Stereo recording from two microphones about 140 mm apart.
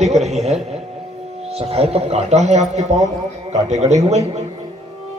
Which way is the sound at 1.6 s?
45° right (ahead or behind).